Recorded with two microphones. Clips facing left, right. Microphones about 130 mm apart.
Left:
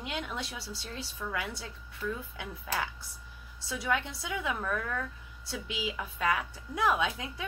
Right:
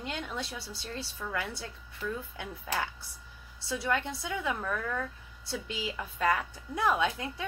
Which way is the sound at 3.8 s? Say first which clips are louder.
Even; 5° left (ahead or behind).